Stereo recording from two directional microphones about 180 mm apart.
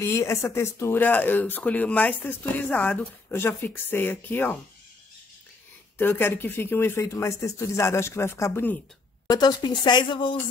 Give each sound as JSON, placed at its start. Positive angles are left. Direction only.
{"t": 0.0, "sound": "speech", "side_deg": 15}
{"t": 5.9, "sound": "speech", "side_deg": 10}